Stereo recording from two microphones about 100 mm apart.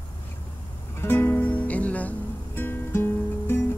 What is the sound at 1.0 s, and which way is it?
Music, 20° left (ahead or behind).